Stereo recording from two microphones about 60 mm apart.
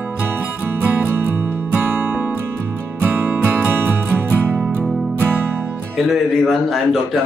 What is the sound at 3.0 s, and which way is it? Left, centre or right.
Music, right.